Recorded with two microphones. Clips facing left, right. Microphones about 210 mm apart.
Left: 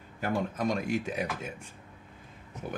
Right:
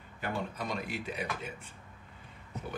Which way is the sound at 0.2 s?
45° left (ahead or behind).